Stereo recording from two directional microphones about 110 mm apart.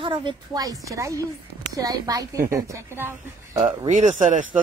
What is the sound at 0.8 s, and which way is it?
A woman's voice, 30° right (ahead or behind).